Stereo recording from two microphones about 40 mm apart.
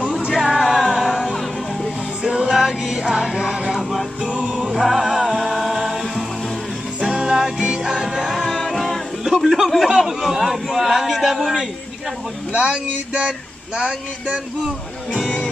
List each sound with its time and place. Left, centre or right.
0.3 s music: centre
2.2 s music: right
2.5 s music: centre
4.7 s music: centre
7.0 s music: right
7.8 s music: centre
8.4 s music: centre
9.8 s a man's voice: centre
12.5 s speech: right
13.7 s a sound: right
15.1 s speech: centre